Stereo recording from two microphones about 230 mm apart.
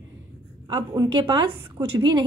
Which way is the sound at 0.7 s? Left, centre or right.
Centre.